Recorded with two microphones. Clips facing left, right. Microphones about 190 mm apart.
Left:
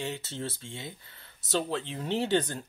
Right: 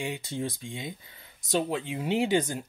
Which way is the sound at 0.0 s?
15° right (ahead or behind).